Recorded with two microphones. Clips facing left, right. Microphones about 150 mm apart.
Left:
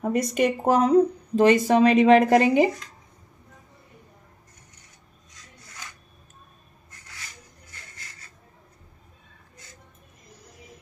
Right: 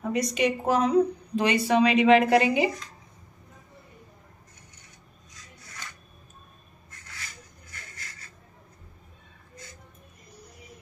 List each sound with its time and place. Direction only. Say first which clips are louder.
0.1 s a woman's voice: left 2 dB; 55° left (ahead or behind)